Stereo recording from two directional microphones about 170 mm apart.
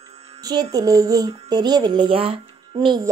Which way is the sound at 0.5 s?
25° right (ahead or behind).